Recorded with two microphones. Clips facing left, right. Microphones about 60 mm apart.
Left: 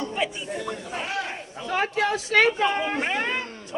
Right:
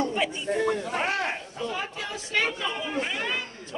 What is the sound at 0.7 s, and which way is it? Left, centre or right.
Speech, right.